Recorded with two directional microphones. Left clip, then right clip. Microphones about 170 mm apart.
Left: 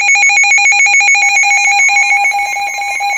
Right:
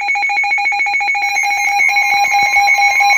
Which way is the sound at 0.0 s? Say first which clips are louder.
Left 7 dB; 40° left (ahead or behind).